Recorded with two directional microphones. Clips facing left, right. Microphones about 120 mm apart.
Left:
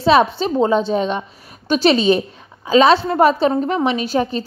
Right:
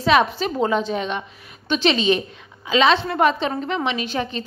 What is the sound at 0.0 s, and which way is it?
A woman's voice, 30° left (ahead or behind).